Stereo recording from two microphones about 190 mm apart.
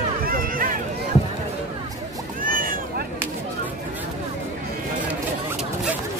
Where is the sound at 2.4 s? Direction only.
45° right (ahead or behind).